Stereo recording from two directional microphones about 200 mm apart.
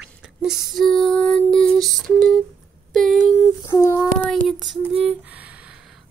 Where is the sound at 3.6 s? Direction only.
15° left (ahead or behind).